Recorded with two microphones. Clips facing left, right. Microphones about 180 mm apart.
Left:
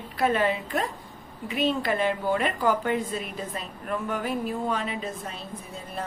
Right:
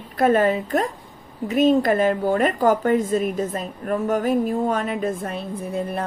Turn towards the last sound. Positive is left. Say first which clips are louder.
# right 10 dB
turn(degrees=-60)  # may be behind; listen again after turning